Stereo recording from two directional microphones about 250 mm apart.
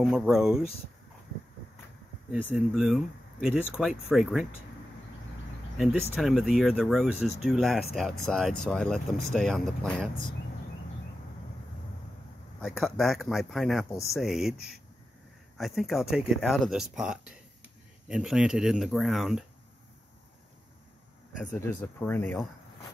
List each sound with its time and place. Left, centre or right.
0.0 s speech: centre
2.5 s speech: centre
6.1 s speech: centre
12.6 s speech: centre
15.5 s speech: centre
21.5 s speech: centre